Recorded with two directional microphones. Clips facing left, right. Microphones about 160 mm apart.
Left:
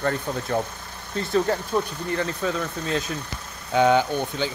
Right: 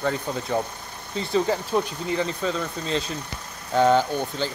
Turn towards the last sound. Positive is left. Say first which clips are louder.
# left 1 dB
turn(degrees=0)  # may be behind; listen again after turning